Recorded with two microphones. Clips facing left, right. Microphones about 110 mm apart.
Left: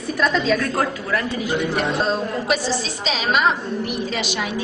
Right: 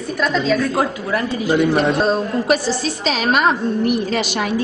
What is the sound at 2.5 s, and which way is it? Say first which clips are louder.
A woman's voice: right 4 dB; 50° right (ahead or behind).